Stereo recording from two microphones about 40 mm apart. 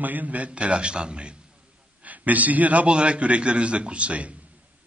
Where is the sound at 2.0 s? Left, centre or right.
Right.